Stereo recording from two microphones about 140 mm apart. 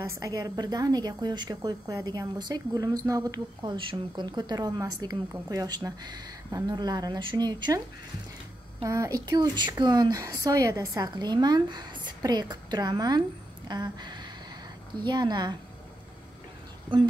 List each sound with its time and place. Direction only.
0.0 s a woman's voice: 25° right (ahead or behind)
8.8 s a woman's voice: 25° right (ahead or behind)